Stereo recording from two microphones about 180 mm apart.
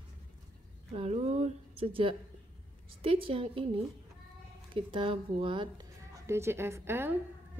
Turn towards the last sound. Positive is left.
turn(degrees=-15)  # may be behind; listen again after turning